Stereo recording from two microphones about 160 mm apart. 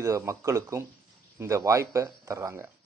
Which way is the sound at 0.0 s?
20° right (ahead or behind).